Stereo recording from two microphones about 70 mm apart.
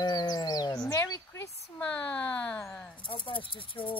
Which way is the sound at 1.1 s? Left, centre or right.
Left.